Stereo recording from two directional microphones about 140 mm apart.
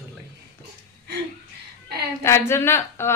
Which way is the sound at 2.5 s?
15° left (ahead or behind).